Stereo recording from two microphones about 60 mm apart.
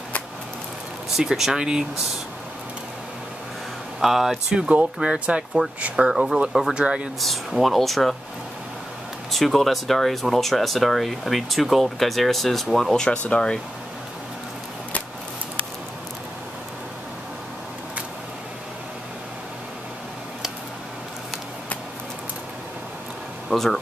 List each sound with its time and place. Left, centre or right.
1.1 s speech: centre
4.0 s speech: centre
4.6 s speech: centre
6.0 s speech: centre
7.2 s speech: centre
9.3 s speech: centre
12.9 s speech: centre
23.5 s speech: centre